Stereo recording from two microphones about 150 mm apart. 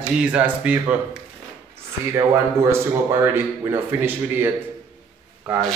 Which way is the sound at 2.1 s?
20° right (ahead or behind).